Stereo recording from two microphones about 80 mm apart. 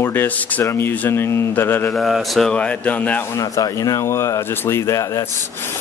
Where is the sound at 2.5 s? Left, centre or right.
Centre.